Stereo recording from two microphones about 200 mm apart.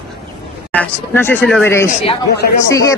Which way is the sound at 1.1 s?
10° left (ahead or behind).